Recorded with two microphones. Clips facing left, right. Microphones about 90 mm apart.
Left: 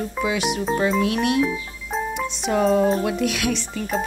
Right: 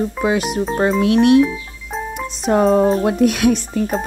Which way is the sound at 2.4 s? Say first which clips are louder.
Right 5 dB; 40° right (ahead or behind).